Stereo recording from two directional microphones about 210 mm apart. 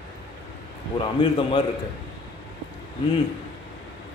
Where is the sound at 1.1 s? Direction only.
25° left (ahead or behind).